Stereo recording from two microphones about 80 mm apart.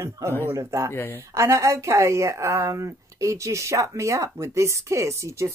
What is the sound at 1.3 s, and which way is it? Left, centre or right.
A woman's voice, right.